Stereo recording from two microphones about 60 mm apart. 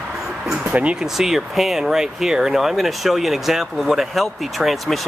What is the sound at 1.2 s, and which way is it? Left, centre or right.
Speech, centre.